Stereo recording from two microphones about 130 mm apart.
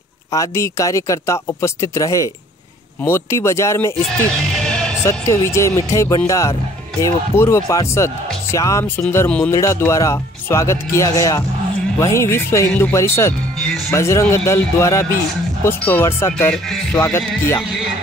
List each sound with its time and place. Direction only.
0.3 s speech: 25° left (ahead or behind)
5.0 s speech: 20° left (ahead or behind)